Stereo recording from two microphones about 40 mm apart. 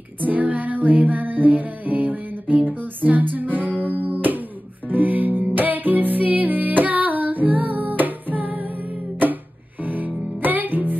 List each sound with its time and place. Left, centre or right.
0.2 s music: right
9.8 s music: right